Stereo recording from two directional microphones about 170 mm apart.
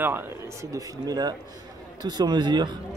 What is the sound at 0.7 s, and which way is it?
Speech, 20° right (ahead or behind).